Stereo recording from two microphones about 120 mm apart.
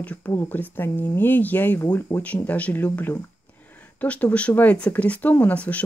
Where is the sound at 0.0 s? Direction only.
15° left (ahead or behind).